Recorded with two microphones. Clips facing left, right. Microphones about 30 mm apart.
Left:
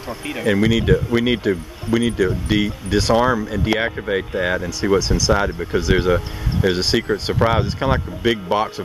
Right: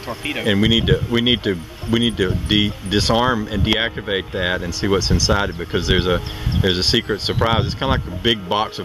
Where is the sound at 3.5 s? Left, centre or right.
Right.